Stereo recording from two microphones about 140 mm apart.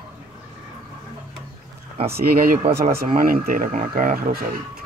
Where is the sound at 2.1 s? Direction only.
90° right; by 4.4 s 70° right (ahead or behind).